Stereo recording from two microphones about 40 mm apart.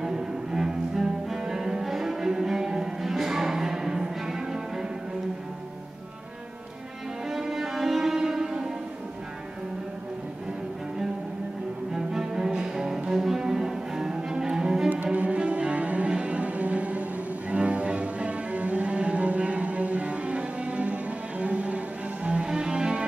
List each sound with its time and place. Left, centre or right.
0.0 s cello: centre
7.2 s music: centre
11.9 s cello: centre
15.1 s cello: right
17.5 s music: right